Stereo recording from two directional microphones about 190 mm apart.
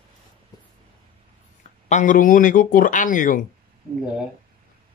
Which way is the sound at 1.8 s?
40° left (ahead or behind).